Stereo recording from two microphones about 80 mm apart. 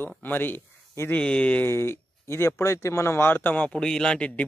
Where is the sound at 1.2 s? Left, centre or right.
Centre.